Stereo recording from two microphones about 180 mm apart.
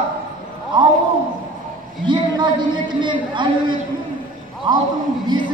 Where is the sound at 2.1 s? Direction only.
25° right (ahead or behind).